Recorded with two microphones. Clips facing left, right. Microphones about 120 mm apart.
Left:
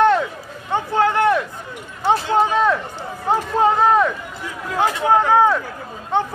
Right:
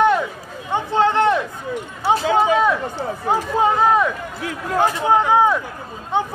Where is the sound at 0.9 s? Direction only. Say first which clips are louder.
Even; 25° right (ahead or behind).